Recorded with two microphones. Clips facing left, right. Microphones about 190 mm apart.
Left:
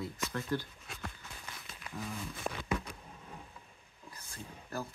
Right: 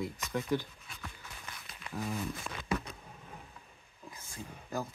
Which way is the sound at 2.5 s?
50° left (ahead or behind).